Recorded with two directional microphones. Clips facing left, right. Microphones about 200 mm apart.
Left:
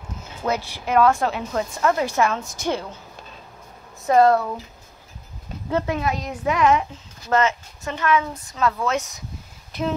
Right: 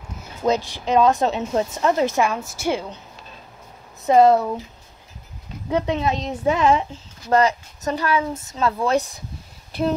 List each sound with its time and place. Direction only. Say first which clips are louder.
0.4 s speech: right 4 dB; 15° right (ahead or behind)
4.0 s a woman's voice: right 2 dB; 20° right (ahead or behind)
5.7 s a woman's voice: right 2 dB; 15° right (ahead or behind); by 9.2 s 35° right (ahead or behind)
9.7 s a sound: right 3 dB; 35° right (ahead or behind)